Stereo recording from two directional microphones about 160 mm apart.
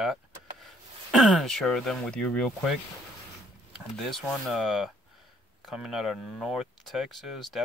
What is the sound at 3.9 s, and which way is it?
Speech, 5° left (ahead or behind).